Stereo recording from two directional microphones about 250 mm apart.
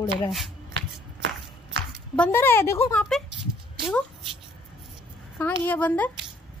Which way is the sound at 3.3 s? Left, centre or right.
Right.